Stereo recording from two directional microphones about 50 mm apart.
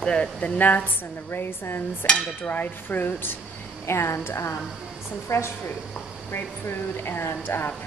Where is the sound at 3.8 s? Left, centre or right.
Left.